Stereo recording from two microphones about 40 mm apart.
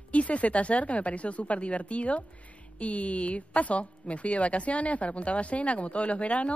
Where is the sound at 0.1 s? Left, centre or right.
Left.